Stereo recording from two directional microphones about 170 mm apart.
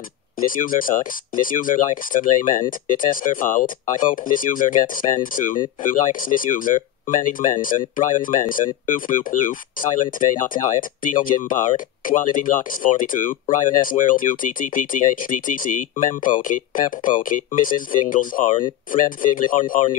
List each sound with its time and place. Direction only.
0.5 s speech: 50° left (ahead or behind)